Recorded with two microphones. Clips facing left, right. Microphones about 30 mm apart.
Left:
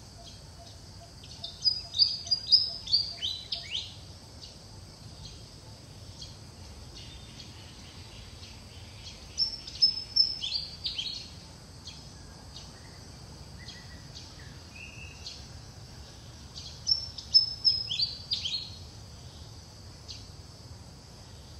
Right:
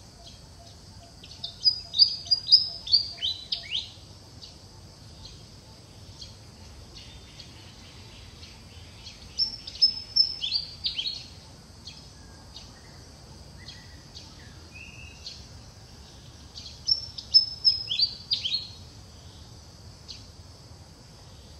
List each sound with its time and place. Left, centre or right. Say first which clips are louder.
1.4 s bird vocalization: right 4 dB; right
9.4 s bird: right 2 dB; right
10.3 s bird vocalization: right 4 dB; right
16.8 s bird vocalization: right 2 dB; right